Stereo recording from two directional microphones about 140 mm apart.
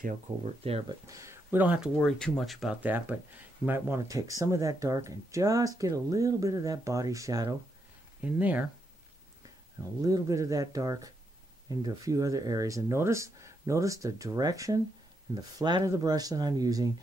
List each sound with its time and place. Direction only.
0.7 s speech: 45° right (ahead or behind)
1.0 s speech: 20° right (ahead or behind)
2.0 s speech: 5° left (ahead or behind)
2.8 s speech: 10° right (ahead or behind)
8.2 s speech: 10° right (ahead or behind)
10.0 s speech: 25° right (ahead or behind)